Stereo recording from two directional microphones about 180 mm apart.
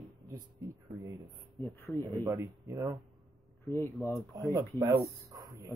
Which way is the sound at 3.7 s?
15° left (ahead or behind).